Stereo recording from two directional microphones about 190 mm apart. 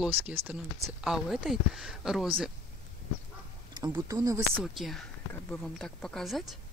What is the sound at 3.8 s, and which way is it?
Speech, 20° right (ahead or behind).